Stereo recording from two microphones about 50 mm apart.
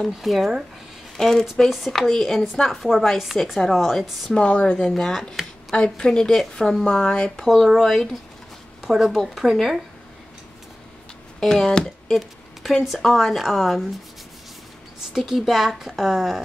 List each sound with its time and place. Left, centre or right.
0.0 s speech: centre
4.5 s speech: left
4.8 s speech: centre
7.4 s speech: centre
11.3 s speech: centre
15.1 s speech: centre